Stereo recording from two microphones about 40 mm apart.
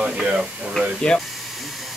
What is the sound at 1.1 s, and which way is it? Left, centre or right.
Speech, left.